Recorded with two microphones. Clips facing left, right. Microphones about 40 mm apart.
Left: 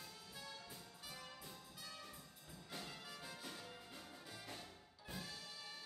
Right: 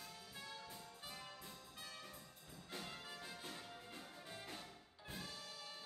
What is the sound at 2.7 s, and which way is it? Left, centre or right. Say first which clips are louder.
Music: right 1 dB; centre.